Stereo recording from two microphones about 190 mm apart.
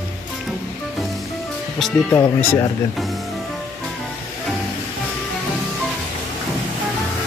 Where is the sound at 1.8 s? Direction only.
10° left (ahead or behind).